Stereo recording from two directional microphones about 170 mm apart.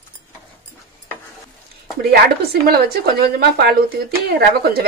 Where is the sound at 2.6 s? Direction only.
65° right (ahead or behind).